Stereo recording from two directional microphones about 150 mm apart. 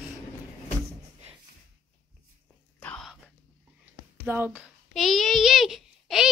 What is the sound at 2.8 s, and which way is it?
Whispering, 10° left (ahead or behind).